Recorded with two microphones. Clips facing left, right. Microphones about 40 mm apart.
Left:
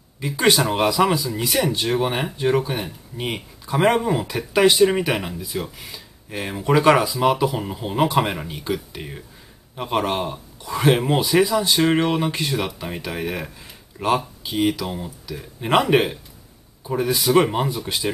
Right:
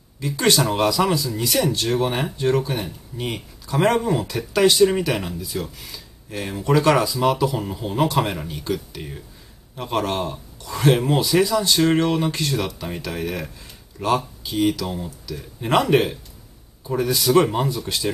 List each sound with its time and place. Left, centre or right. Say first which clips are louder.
0.2 s speech: left 1 dB; centre